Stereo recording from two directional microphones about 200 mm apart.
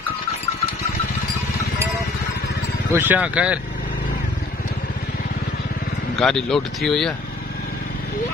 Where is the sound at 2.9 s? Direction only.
10° right (ahead or behind).